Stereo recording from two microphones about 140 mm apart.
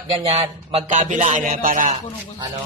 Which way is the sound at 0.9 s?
60° right (ahead or behind).